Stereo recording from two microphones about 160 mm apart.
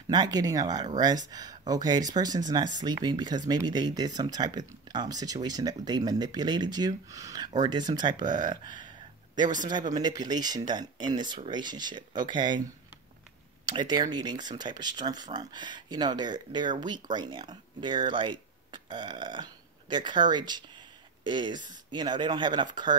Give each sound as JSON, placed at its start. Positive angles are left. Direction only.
{"t": 0.1, "sound": "speech", "side_deg": -25}
{"t": 13.7, "sound": "speech", "side_deg": -25}